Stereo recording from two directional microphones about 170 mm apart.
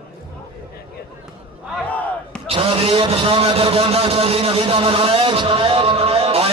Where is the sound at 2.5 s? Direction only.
35° right (ahead or behind).